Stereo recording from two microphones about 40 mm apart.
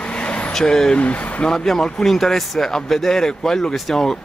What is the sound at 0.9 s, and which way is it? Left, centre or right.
Speech, left.